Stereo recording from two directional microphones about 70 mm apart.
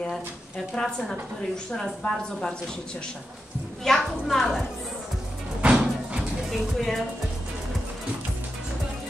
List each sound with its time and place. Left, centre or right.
0.7 s a woman's voice: centre
3.8 s a woman's voice: centre
5.6 s music: centre
6.5 s a woman's voice: centre